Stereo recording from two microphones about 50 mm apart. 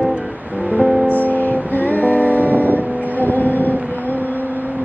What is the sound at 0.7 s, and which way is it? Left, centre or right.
Music, right.